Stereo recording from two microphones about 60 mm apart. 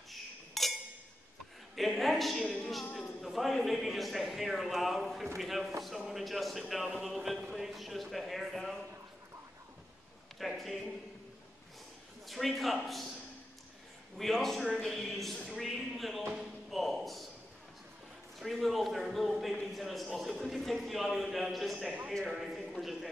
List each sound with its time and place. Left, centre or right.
0.1 s chink: centre
1.8 s a woman's voice: centre
10.4 s speech: centre
12.3 s speech: centre
14.1 s speech: centre
18.4 s a man's voice: centre